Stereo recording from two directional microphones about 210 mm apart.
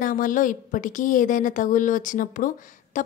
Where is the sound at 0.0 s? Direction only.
40° left (ahead or behind).